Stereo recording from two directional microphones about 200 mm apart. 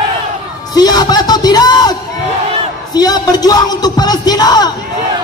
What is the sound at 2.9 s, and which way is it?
A man's voice, 20° left (ahead or behind).